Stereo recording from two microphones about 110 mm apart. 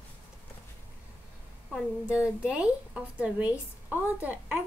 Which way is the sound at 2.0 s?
10° right (ahead or behind).